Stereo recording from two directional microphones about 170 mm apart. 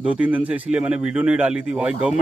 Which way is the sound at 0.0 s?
5° right (ahead or behind).